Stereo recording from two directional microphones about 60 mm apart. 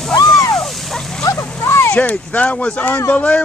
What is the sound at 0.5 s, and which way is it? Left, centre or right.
Dog, centre.